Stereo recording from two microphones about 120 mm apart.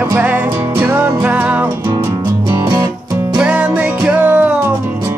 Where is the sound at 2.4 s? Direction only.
30° right (ahead or behind).